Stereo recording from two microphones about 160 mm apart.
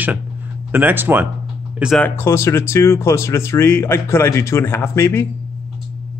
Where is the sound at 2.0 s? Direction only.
15° left (ahead or behind).